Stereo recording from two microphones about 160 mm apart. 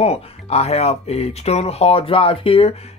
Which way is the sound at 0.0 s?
40° left (ahead or behind).